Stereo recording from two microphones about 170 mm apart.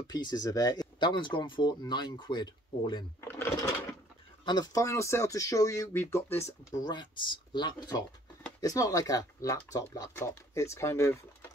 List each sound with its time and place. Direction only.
0.0 s speech: 25° left (ahead or behind)
4.5 s speech: 20° left (ahead or behind)